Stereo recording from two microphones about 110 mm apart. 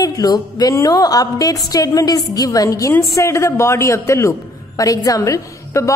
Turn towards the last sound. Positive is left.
turn(degrees=30)  # may be behind; listen again after turning